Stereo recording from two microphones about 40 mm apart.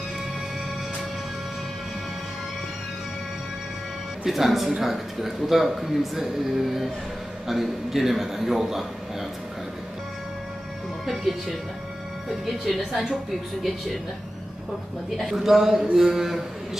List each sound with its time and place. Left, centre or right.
4.3 s a man's voice: centre
11.1 s a man's voice: centre
15.1 s a man's voice: centre